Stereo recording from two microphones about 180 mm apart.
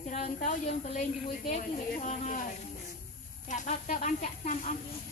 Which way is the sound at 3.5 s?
40° left (ahead or behind).